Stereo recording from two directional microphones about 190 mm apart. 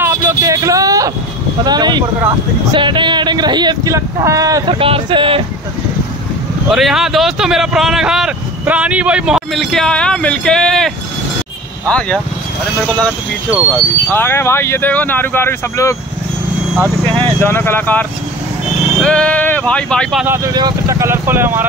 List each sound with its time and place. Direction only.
0.0 s vehicle: 15° right (ahead or behind)
1.6 s speech: 20° right (ahead or behind)
6.7 s speech: centre (ahead or behind)
13.5 s speech: 10° right (ahead or behind)
14.1 s speech: 10° left (ahead or behind)
17.5 s speech: 10° left (ahead or behind)
20.2 s speech: 20° right (ahead or behind)